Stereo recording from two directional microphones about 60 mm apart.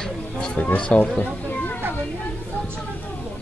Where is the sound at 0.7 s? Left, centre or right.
Centre.